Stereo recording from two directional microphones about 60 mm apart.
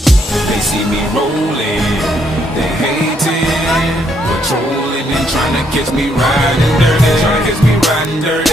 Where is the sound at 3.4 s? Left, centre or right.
Centre.